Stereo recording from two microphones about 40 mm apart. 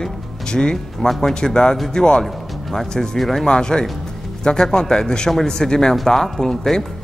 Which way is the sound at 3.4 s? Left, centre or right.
Centre.